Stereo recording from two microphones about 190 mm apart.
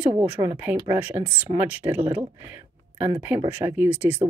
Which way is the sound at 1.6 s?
10° right (ahead or behind).